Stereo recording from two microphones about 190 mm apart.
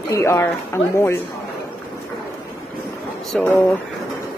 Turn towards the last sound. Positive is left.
turn(degrees=10)  # may be behind; listen again after turning